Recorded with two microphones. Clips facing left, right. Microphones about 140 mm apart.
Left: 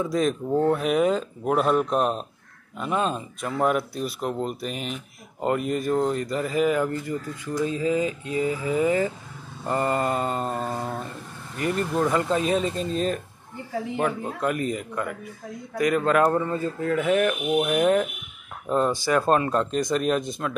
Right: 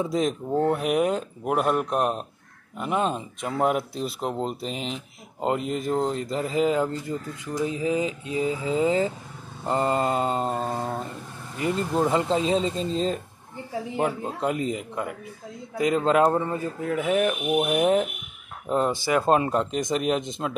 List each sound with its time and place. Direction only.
0.0 s speech: 20° right (ahead or behind)